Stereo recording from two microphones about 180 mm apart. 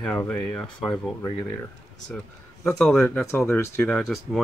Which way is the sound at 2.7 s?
5° left (ahead or behind).